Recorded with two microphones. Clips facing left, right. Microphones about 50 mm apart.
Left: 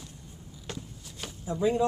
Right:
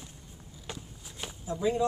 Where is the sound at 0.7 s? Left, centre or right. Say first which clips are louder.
Left 2 dB; centre.